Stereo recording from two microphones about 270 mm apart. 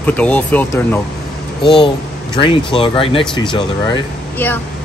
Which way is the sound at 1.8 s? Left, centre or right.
Centre.